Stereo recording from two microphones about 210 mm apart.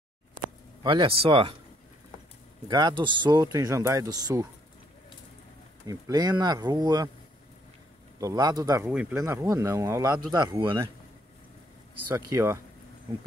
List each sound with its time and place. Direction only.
0.8 s speech: 25° right (ahead or behind)
2.7 s speech: 20° right (ahead or behind)
5.9 s speech: 15° right (ahead or behind)
8.2 s speech: 15° right (ahead or behind)
8.8 s speech: 5° right (ahead or behind); by 10.9 s 25° right (ahead or behind)
12.3 s speech: 15° right (ahead or behind)